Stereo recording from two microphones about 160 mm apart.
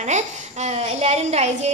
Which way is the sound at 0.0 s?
45° right (ahead or behind).